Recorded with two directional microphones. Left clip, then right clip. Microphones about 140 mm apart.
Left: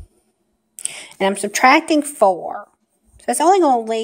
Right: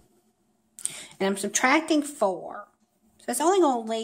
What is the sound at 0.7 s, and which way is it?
A woman's voice, 45° left (ahead or behind).